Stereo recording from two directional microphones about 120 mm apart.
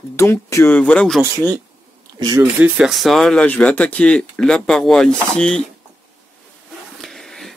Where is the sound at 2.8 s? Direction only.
Centre (ahead or behind).